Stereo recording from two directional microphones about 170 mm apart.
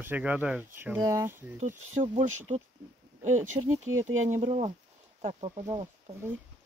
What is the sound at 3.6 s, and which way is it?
Speech, 50° right (ahead or behind).